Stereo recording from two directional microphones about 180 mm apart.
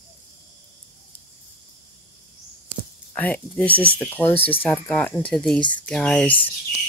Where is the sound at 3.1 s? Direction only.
5° left (ahead or behind).